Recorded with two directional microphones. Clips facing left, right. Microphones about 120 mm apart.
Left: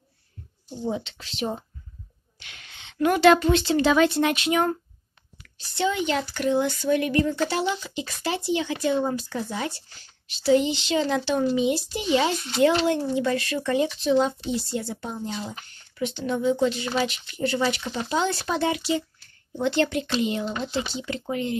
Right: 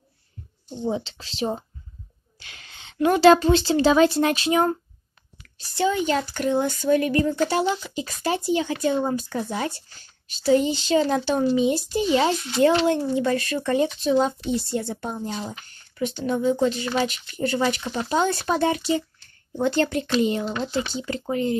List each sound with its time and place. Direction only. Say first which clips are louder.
0.7 s a woman's voice: right 2 dB; 25° right (ahead or behind)